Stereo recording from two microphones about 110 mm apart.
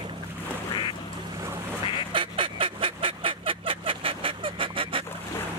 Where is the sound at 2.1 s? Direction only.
50° right (ahead or behind).